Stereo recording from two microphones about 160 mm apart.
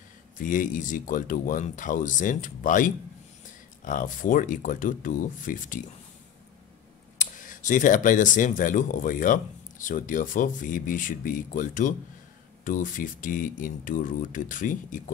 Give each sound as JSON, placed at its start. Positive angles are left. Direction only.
{"t": 0.4, "sound": "speech", "side_deg": 55}
{"t": 7.2, "sound": "speech", "side_deg": 55}